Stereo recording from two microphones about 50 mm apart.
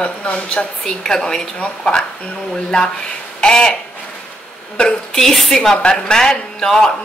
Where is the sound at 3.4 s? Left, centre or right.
Centre.